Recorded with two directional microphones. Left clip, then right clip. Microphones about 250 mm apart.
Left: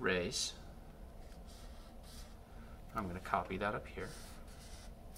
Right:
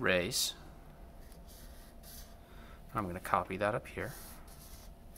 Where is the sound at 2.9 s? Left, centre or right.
Right.